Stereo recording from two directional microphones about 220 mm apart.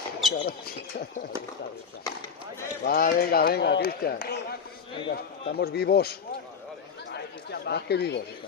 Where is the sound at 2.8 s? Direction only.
45° left (ahead or behind).